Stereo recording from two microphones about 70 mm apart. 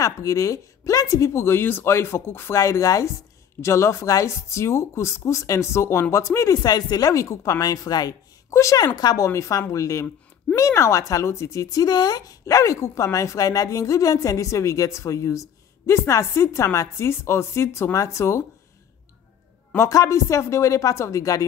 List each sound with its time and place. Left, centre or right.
0.0 s speech: left
2.6 s a woman's voice: left
6.6 s a woman's voice: left
8.5 s a woman's voice: left
8.9 s speech: left
9.3 s a woman's voice: left
19.9 s a woman's voice: left